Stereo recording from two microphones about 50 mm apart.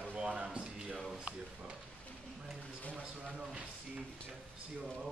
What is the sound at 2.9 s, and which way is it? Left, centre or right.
Speech, centre.